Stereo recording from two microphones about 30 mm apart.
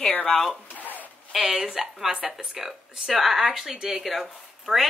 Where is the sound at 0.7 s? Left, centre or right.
Left.